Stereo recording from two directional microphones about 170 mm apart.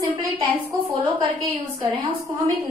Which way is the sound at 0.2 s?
20° right (ahead or behind).